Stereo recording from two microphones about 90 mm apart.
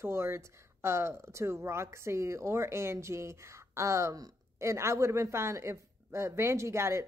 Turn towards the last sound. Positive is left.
turn(degrees=-30)  # may be behind; listen again after turning